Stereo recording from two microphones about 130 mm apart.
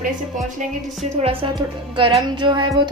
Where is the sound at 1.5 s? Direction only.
40° right (ahead or behind).